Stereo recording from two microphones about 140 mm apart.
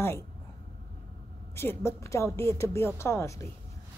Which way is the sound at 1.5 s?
20° left (ahead or behind).